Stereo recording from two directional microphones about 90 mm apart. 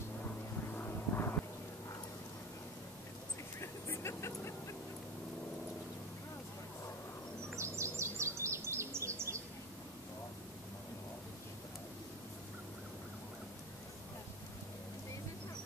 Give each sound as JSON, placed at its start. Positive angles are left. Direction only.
{"t": 0.2, "sound": "vehicle", "side_deg": 25}
{"t": 3.6, "sound": "vehicle", "side_deg": 30}
{"t": 7.5, "sound": "bird", "side_deg": -30}